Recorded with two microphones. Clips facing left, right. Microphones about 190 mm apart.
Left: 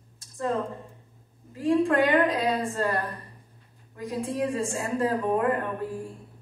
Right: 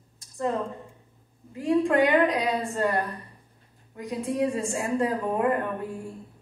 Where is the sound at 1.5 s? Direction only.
20° right (ahead or behind).